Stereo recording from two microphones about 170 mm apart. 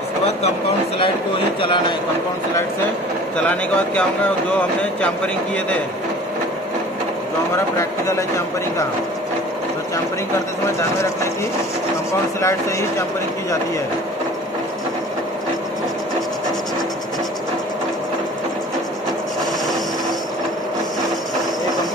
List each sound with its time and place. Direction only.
0.9 s speech: 30° left (ahead or behind)
3.4 s speech: 10° left (ahead or behind)
7.7 s speech: 15° left (ahead or behind)